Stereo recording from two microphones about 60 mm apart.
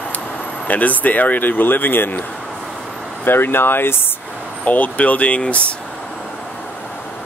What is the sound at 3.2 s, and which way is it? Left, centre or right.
Speech, left.